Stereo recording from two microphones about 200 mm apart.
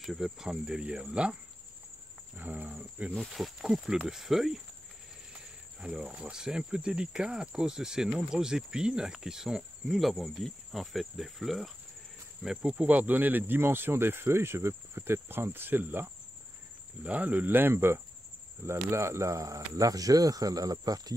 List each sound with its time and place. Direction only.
0.0 s speech: centre (ahead or behind)
2.3 s speech: 10° right (ahead or behind)
5.8 s speech: 5° right (ahead or behind)